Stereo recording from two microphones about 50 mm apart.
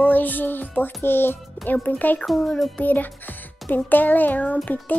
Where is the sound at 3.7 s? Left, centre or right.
Left.